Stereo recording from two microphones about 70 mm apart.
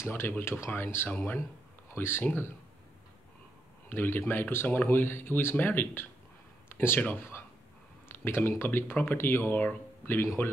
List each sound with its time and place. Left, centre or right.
0.0 s speech: left
3.9 s speech: left
6.7 s a sound: left
8.2 s speech: left